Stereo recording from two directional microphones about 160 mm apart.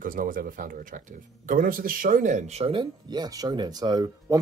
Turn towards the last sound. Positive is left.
turn(degrees=-25)  # may be behind; listen again after turning